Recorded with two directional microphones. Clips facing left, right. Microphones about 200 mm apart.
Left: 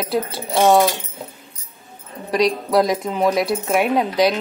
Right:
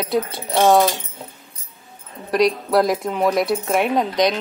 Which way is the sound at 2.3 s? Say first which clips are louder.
Right 1 dB; centre (ahead or behind).